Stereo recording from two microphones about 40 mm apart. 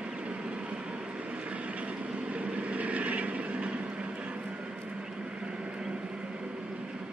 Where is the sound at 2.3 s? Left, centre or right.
Right.